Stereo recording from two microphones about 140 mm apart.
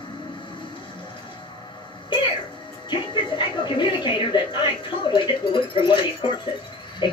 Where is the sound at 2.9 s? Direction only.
35° left (ahead or behind).